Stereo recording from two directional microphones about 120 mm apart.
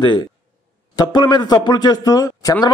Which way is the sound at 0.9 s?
35° left (ahead or behind).